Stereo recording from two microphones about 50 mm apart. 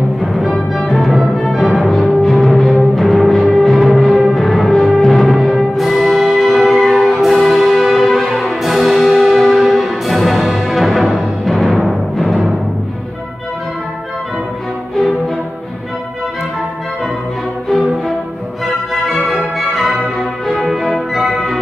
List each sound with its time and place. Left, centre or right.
0.2 s music: centre
19.0 s music: centre